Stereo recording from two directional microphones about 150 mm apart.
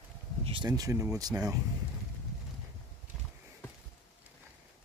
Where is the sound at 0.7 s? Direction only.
25° right (ahead or behind).